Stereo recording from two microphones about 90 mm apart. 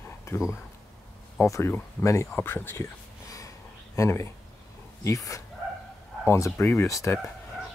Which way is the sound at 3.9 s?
30° left (ahead or behind).